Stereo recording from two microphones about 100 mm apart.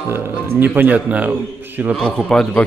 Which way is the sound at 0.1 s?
25° right (ahead or behind).